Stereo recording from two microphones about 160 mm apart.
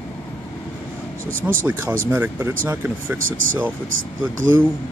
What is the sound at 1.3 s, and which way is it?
Speech, 60° right (ahead or behind).